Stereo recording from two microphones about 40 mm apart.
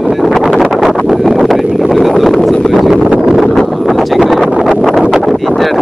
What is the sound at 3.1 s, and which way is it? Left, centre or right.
Wind noise, centre.